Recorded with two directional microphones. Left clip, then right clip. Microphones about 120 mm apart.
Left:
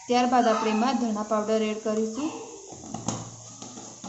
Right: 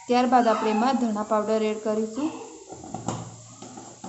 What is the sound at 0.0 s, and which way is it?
Speech, 15° right (ahead or behind).